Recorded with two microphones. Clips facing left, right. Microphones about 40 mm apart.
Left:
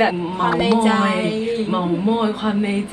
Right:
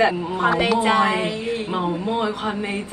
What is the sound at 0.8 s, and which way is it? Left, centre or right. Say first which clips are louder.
Speech: left 1 dB; right.